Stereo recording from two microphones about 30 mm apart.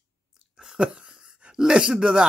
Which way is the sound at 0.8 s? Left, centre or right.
Right.